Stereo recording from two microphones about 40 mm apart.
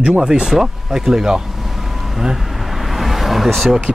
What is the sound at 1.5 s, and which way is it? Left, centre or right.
Vehicle, centre.